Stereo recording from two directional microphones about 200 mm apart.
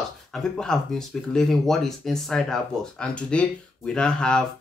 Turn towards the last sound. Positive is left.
turn(degrees=5)  # may be behind; listen again after turning